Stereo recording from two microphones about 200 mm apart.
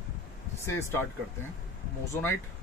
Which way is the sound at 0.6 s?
15° left (ahead or behind).